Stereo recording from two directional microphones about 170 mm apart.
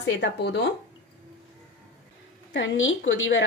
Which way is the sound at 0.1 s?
85° left.